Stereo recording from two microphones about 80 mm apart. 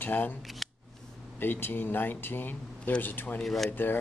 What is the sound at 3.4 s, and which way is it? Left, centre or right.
Speech, centre.